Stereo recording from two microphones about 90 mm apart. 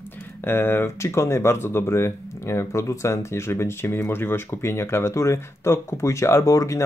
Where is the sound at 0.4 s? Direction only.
25° left (ahead or behind).